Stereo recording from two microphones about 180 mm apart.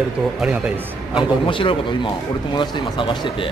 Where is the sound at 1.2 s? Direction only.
30° left (ahead or behind).